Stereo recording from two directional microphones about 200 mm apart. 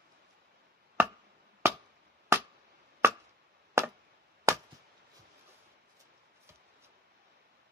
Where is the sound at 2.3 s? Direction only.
15° right (ahead or behind).